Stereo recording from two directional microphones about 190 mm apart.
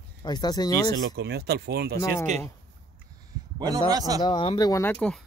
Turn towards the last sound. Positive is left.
turn(degrees=5)  # may be behind; listen again after turning